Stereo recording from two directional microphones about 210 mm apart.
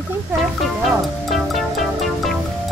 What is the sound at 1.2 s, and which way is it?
Music, centre (ahead or behind).